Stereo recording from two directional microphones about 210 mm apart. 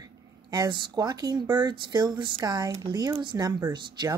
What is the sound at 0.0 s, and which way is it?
Speech, 20° right (ahead or behind).